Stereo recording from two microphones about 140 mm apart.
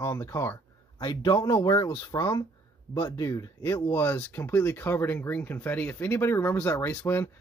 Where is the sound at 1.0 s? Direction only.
35° left (ahead or behind); by 7.2 s 15° left (ahead or behind).